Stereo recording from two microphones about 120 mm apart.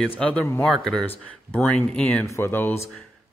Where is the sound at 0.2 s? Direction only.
10° left (ahead or behind).